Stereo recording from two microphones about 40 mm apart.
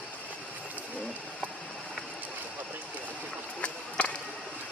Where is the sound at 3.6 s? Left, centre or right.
Left.